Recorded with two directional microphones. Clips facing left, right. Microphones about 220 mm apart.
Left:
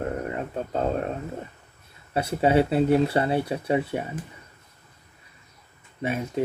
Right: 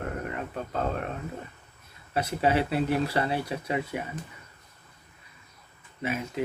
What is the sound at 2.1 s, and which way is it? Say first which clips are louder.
Speech: left 5 dB; 25° left (ahead or behind).